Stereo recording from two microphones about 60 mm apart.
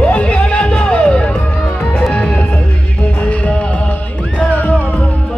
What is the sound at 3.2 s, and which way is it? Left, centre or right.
Music, left.